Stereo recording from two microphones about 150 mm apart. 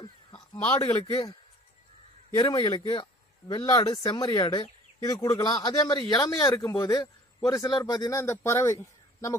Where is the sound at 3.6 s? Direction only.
20° left (ahead or behind).